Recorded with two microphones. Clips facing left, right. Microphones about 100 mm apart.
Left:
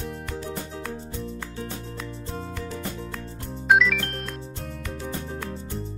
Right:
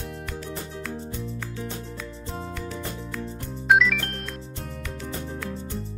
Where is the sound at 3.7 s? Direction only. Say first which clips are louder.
Even; centre (ahead or behind).